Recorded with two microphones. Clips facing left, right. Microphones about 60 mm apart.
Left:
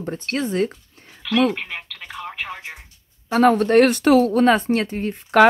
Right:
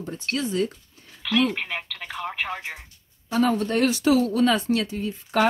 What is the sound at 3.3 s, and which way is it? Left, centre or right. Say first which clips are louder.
Speech: left 7 dB; left.